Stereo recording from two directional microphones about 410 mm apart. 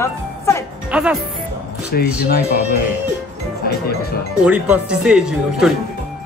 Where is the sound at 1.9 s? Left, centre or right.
Left.